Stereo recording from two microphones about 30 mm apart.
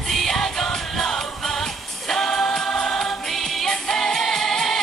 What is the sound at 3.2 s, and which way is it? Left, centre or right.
Music, centre.